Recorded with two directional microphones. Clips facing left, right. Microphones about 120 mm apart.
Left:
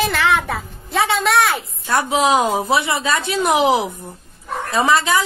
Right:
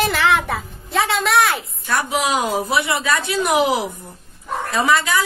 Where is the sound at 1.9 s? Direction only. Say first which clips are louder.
Left 4 dB; 25° left (ahead or behind).